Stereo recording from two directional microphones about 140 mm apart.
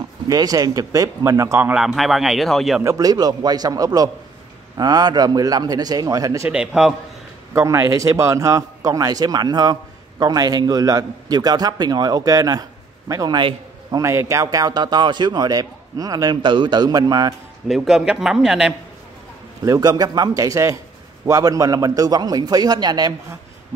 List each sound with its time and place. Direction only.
0.3 s a man's voice: 25° right (ahead or behind)
1.7 s a man's voice: 5° right (ahead or behind)
2.8 s a man's voice: 25° right (ahead or behind)
6.5 s a man's voice: 5° right (ahead or behind)
7.5 s a man's voice: 20° right (ahead or behind)
17.6 s a man's voice: 5° right (ahead or behind)
19.6 s a man's voice: 25° right (ahead or behind)